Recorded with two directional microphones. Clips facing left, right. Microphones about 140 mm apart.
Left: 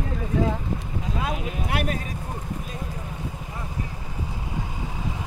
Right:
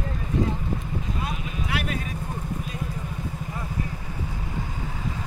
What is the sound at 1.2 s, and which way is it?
Vehicle, 80° left.